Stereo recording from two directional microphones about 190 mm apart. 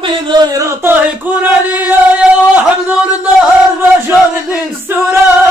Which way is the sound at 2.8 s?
5° right (ahead or behind).